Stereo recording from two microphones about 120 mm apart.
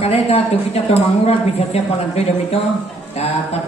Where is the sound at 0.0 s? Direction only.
60° left (ahead or behind).